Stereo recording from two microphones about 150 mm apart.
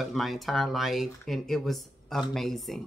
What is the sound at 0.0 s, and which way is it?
A woman's voice, centre (ahead or behind).